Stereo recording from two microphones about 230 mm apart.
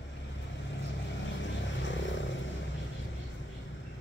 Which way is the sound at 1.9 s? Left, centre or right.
Left.